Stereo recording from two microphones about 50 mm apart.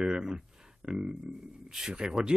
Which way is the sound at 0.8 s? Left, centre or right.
Centre.